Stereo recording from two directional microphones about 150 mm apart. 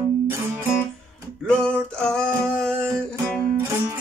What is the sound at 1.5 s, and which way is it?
Music, 5° left (ahead or behind).